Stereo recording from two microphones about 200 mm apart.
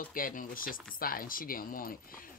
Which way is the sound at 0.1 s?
45° left (ahead or behind).